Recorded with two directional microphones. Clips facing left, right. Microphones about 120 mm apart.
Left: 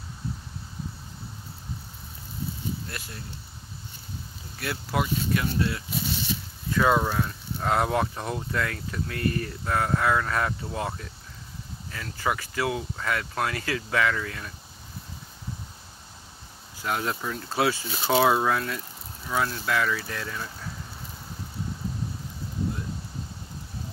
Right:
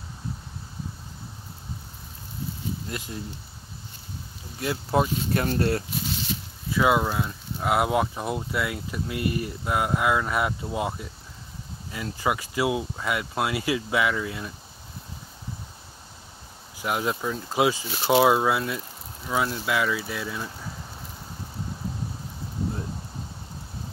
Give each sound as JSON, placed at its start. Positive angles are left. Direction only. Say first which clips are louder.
{"t": 2.9, "sound": "speech", "louder": "right 5 dB", "side_deg": -20}
{"t": 4.6, "sound": "speech", "louder": "right 5 dB", "side_deg": -25}
{"t": 5.3, "sound": "speech", "louder": "right 3 dB", "side_deg": -45}
{"t": 6.7, "sound": "speech", "louder": "right 1 dB", "side_deg": -10}
{"t": 16.7, "sound": "speech", "louder": "right 2 dB", "side_deg": -15}